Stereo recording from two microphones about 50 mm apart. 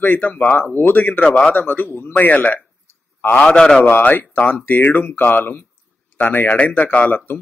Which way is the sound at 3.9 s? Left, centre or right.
Left.